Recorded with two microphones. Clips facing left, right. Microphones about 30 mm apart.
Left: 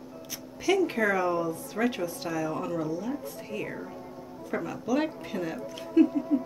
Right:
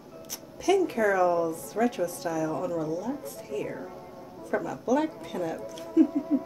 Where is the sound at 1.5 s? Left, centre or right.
Left.